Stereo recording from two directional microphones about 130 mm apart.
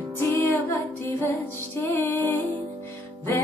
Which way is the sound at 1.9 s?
15° left (ahead or behind).